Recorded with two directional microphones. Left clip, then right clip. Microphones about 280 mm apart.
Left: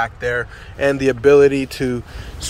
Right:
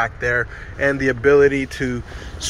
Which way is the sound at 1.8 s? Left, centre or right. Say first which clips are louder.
Left 3 dB; left.